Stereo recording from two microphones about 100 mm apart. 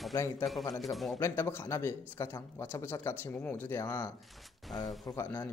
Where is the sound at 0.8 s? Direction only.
Centre (ahead or behind).